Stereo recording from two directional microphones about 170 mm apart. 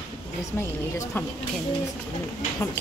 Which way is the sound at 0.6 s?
15° left (ahead or behind).